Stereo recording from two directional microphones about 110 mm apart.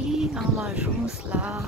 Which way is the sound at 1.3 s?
15° right (ahead or behind).